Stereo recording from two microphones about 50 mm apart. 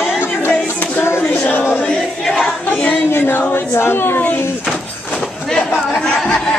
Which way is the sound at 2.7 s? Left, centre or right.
Left.